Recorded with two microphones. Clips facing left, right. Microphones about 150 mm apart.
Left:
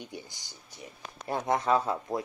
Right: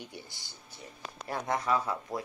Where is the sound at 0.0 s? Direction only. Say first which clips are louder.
Left 3 dB; 20° left (ahead or behind).